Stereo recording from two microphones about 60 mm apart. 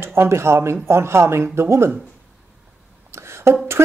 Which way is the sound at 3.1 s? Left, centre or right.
Right.